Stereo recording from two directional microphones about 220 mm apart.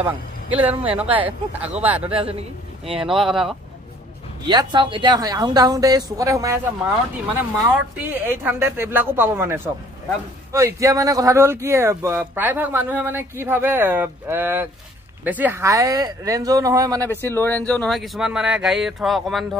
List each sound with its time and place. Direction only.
0.0 s speech: 5° right (ahead or behind)
2.8 s speech: 25° right (ahead or behind)
3.1 s speech: centre (ahead or behind)
4.5 s speech: 20° right (ahead or behind)
17.0 s speech: 10° left (ahead or behind)